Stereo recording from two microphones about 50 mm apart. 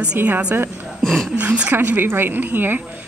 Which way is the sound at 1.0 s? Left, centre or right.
Centre.